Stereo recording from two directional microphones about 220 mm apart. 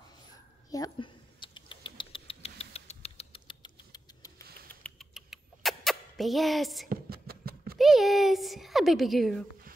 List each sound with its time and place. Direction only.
0.7 s rodents: 15° left (ahead or behind)
4.8 s rodents: centre (ahead or behind)
6.9 s cat: 45° right (ahead or behind)
7.8 s a sound: centre (ahead or behind)